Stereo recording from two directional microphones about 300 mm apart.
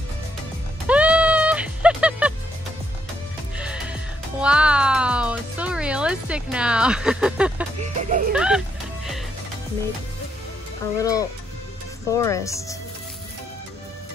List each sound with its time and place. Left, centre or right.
0.8 s music: centre
3.5 s music: centre
7.8 s speech: right
8.3 s music: centre
11.0 s speech: centre